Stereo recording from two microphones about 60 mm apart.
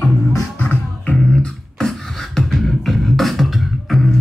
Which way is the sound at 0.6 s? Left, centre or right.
Left.